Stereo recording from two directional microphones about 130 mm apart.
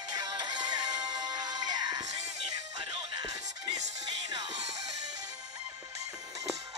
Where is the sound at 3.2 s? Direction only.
30° right (ahead or behind).